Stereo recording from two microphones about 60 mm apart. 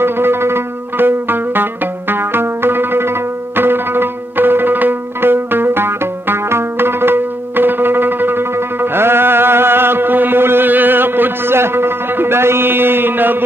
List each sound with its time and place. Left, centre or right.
0.0 s music: right